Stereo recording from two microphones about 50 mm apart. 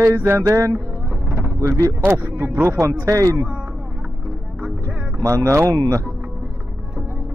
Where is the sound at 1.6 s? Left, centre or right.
Right.